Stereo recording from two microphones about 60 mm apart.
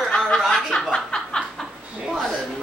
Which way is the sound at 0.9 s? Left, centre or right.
Centre.